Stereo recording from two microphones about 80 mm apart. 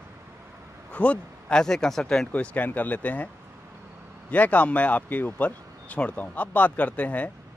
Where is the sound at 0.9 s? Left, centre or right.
Centre.